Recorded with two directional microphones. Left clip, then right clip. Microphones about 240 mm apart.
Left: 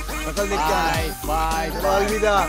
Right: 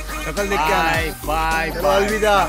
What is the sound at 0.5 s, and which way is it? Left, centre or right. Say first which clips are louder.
Music: right 4 dB; right.